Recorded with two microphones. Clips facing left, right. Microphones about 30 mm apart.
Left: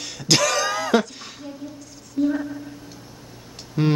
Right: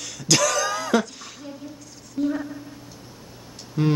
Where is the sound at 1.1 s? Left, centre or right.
Left.